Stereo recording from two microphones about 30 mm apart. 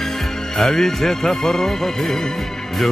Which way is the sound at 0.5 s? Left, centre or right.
Centre.